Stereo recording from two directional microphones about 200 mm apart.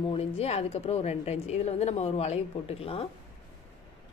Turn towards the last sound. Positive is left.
turn(degrees=30)  # may be behind; listen again after turning